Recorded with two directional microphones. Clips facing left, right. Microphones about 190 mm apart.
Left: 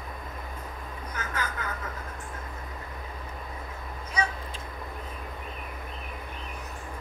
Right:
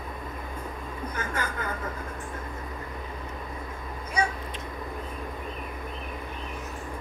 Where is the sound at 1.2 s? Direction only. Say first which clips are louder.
Right 1 dB; 50° right (ahead or behind).